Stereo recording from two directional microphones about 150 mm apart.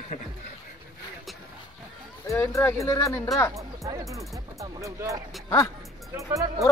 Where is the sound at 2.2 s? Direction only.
20° left (ahead or behind).